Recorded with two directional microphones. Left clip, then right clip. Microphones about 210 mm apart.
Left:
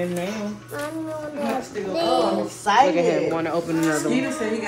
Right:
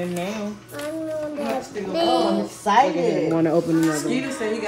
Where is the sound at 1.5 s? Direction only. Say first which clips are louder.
Even; centre (ahead or behind).